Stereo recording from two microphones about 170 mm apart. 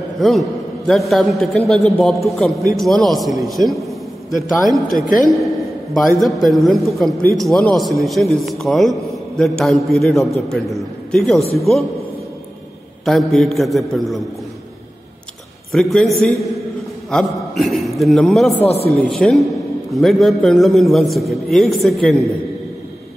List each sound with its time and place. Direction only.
0.2 s a man's voice: centre (ahead or behind)
5.0 s a woman's voice: 50° left (ahead or behind)
5.9 s a man's voice: centre (ahead or behind)
13.0 s a man's voice: centre (ahead or behind)
15.7 s a man's voice: centre (ahead or behind)